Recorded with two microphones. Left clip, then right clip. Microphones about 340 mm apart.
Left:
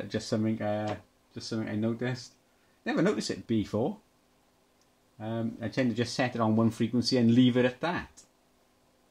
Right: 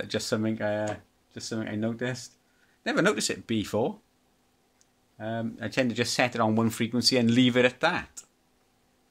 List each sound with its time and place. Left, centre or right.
0.1 s speech: right
0.5 s speech: right
1.3 s speech: right
5.2 s speech: right